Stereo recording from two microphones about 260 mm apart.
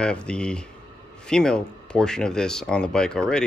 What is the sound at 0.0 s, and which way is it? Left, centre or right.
Speech, centre.